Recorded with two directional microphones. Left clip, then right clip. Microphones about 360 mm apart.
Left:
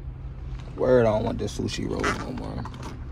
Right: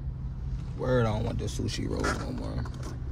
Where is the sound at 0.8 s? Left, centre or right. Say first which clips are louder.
Left 8 dB; centre.